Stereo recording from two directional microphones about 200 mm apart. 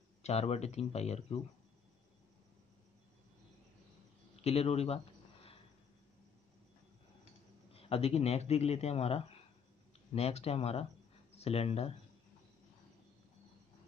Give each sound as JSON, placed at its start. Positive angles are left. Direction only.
{"t": 0.2, "sound": "a man's voice", "side_deg": 30}
{"t": 4.4, "sound": "a sound", "side_deg": 30}
{"t": 7.7, "sound": "a man's voice", "side_deg": 30}